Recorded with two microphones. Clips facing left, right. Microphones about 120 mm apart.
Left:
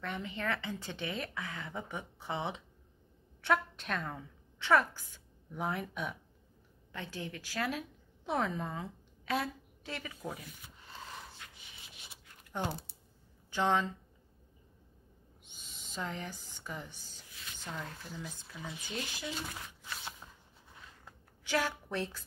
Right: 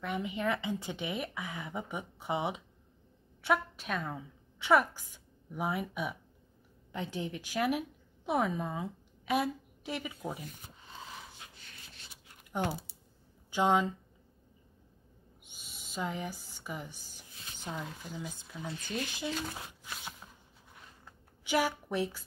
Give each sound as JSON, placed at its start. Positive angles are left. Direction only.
{"t": 0.0, "sound": "a woman's voice", "side_deg": -10}
{"t": 6.9, "sound": "a woman's voice", "side_deg": -20}
{"t": 10.9, "sound": "a sound", "side_deg": -10}
{"t": 11.5, "sound": "rub", "side_deg": 10}
{"t": 13.5, "sound": "speech", "side_deg": -15}
{"t": 15.4, "sound": "owl", "side_deg": -10}
{"t": 17.6, "sound": "speech", "side_deg": -15}
{"t": 18.7, "sound": "speech", "side_deg": 10}
{"t": 19.1, "sound": "speech", "side_deg": -20}
{"t": 21.5, "sound": "a woman's voice", "side_deg": -15}